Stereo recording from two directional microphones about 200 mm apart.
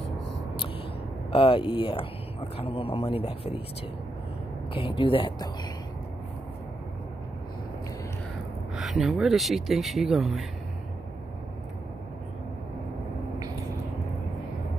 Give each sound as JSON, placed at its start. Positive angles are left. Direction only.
{"t": 1.3, "sound": "speech", "side_deg": 25}
{"t": 4.7, "sound": "speech", "side_deg": 25}
{"t": 8.7, "sound": "speech", "side_deg": 0}